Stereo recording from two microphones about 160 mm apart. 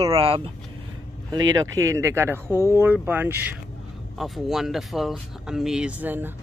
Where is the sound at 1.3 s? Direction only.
20° right (ahead or behind).